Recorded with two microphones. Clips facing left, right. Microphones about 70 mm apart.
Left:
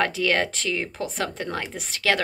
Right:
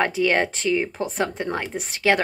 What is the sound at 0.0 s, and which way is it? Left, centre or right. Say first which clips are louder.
A woman's voice: right 2 dB; centre.